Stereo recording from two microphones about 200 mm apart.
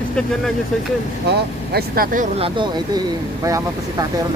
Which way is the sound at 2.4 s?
20° right (ahead or behind).